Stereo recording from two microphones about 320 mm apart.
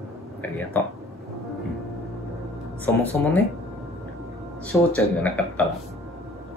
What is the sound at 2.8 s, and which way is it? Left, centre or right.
Speech, centre.